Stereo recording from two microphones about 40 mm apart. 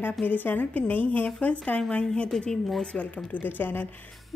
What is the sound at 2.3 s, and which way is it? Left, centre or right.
Speech, centre.